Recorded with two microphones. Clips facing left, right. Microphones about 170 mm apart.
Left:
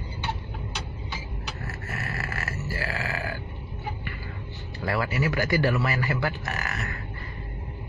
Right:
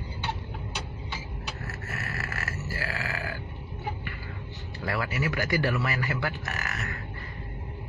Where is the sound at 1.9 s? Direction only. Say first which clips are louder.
Left 3 dB; 30° left (ahead or behind).